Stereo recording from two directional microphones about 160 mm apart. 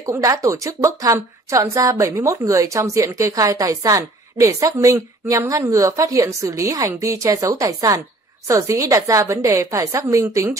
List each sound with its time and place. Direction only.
0.0 s a woman's voice: 20° right (ahead or behind)